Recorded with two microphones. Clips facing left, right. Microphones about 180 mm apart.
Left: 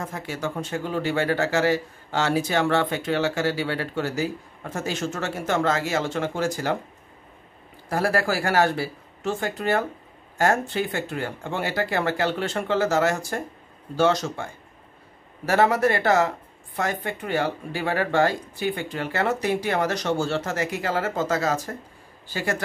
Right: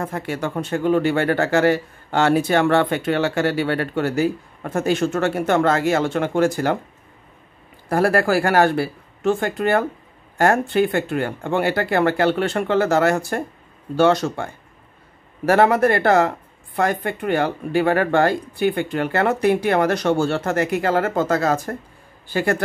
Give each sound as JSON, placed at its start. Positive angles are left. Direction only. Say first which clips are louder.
{"t": 0.0, "sound": "speech", "louder": "right 5 dB", "side_deg": -60}
{"t": 7.9, "sound": "speech", "louder": "right 6 dB", "side_deg": -55}